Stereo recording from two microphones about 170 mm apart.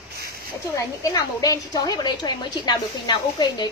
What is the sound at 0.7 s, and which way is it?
A woman's voice, 20° left (ahead or behind).